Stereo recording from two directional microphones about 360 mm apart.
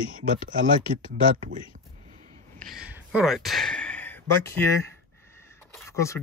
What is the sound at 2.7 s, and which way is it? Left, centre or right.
Speech, centre.